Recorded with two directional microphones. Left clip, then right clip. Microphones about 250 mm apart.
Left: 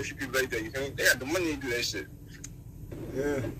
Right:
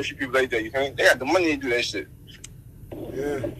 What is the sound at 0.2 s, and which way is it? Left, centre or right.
A man's voice, right.